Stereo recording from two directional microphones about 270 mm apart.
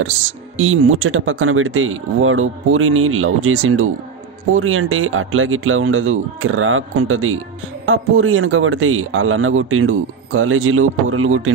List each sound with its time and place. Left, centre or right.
0.6 s a man's voice: right